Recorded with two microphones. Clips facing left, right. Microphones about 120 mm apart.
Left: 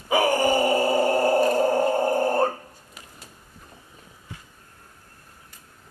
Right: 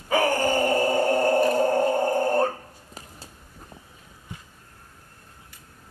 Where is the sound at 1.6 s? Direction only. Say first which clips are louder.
Even; centre (ahead or behind).